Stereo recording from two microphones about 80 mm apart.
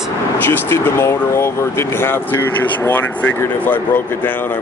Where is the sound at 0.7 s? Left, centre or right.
Left.